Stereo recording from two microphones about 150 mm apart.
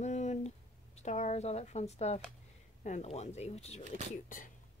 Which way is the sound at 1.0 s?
50° left (ahead or behind).